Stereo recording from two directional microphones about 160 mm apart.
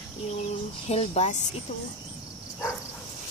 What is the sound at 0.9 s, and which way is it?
Speech, 40° left (ahead or behind).